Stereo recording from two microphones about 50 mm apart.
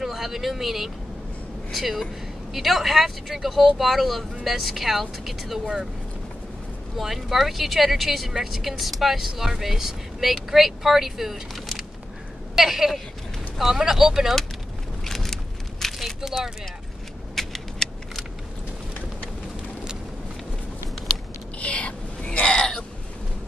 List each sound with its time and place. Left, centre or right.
0.0 s speech: centre
7.0 s speech: centre
15.0 s vehicle: centre
15.8 s a sound: centre
16.2 s speech: centre
17.4 s typing: centre
21.5 s a sound: left